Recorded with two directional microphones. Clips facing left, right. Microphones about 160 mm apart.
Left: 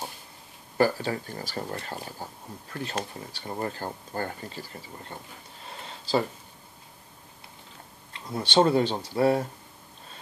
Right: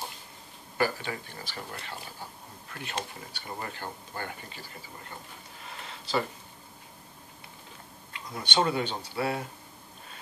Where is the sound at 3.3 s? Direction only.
35° left (ahead or behind).